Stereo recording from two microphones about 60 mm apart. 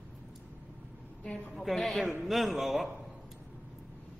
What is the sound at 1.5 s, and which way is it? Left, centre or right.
Speech, centre.